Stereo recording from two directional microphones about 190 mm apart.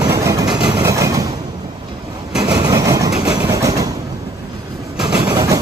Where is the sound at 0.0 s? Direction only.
15° right (ahead or behind).